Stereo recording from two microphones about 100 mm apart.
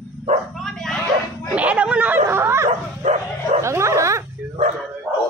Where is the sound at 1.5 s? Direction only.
15° right (ahead or behind).